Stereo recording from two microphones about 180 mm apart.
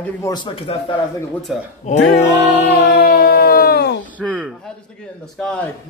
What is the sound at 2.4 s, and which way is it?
Music, 65° left (ahead or behind).